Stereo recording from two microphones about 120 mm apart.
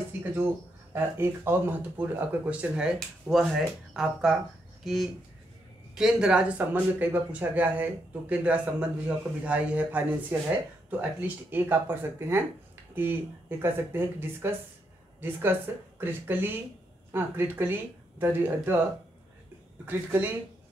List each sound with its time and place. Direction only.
0.9 s speech: 20° right (ahead or behind)
19.9 s speech: 20° right (ahead or behind)